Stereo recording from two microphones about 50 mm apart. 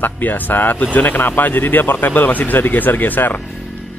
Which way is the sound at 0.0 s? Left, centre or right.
Left.